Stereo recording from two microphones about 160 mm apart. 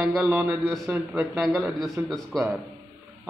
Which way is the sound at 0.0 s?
10° right (ahead or behind).